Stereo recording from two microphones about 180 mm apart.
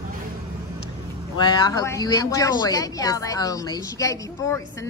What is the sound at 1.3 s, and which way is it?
A woman's voice, 25° left (ahead or behind).